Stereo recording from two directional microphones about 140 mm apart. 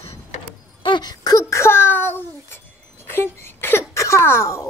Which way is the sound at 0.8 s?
30° left (ahead or behind).